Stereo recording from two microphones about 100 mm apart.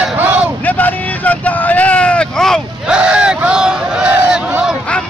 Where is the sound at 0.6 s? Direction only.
15° left (ahead or behind).